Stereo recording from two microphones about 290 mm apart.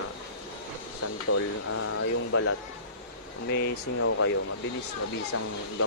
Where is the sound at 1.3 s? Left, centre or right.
Left.